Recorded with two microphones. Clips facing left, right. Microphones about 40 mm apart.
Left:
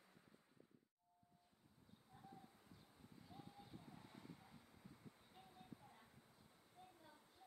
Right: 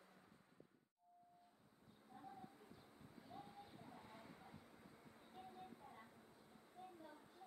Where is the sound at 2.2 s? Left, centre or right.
Right.